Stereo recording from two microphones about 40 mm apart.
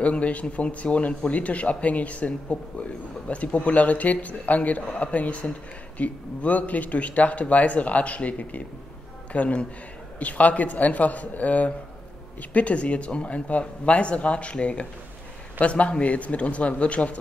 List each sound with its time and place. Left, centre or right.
0.0 s speech: left